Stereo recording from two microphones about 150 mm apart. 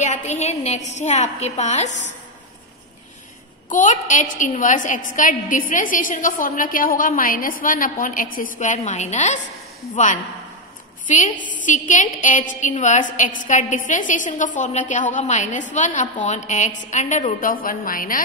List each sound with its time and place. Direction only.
0.0 s a woman's voice: 50° left (ahead or behind)
3.6 s a woman's voice: 55° left (ahead or behind)
11.1 s a woman's voice: 55° left (ahead or behind)